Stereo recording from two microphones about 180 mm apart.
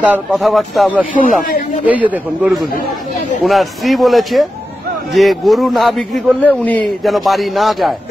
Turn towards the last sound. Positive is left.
turn(degrees=0)  # may be behind; listen again after turning